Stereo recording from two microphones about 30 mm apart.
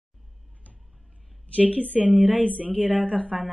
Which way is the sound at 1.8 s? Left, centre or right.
Right.